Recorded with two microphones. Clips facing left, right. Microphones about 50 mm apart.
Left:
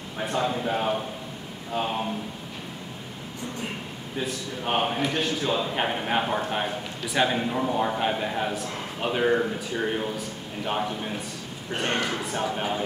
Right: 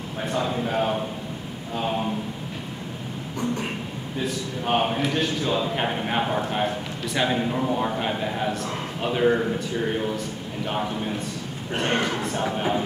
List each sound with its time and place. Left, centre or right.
0.3 s a man's voice: centre
4.6 s a man's voice: centre
11.7 s a man's voice: centre